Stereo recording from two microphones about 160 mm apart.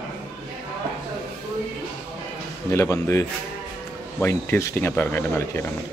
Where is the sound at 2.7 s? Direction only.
20° left (ahead or behind).